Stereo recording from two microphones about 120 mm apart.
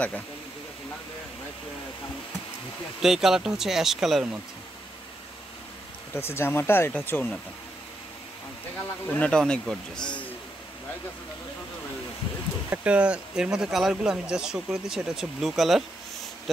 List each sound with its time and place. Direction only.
3.0 s speech: 5° right (ahead or behind)
6.1 s speech: 20° left (ahead or behind)
9.1 s speech: 10° left (ahead or behind)
12.6 s speech: 15° right (ahead or behind)